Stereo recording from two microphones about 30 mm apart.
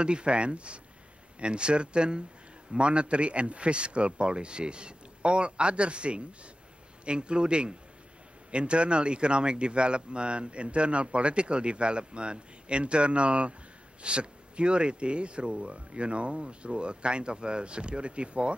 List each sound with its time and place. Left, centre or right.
0.0 s speech: right